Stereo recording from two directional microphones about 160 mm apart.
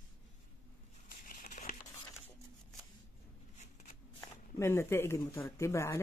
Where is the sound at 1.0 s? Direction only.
60° left (ahead or behind).